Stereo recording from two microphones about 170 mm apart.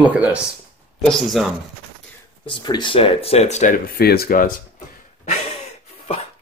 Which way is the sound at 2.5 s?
25° left (ahead or behind).